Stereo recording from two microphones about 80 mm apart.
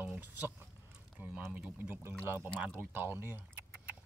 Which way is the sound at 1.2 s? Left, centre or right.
Right.